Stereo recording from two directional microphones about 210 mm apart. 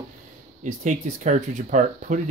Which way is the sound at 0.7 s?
35° right (ahead or behind).